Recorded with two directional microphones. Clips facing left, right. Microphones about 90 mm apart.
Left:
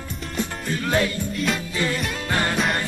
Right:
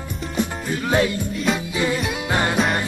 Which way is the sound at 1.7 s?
15° right (ahead or behind).